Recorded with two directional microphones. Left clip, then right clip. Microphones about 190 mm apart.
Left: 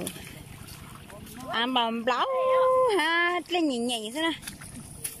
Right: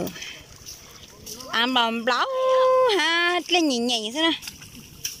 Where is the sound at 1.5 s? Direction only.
Centre (ahead or behind).